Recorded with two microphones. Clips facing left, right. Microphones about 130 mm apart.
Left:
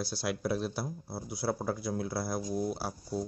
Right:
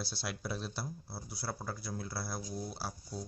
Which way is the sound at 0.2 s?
10° left (ahead or behind).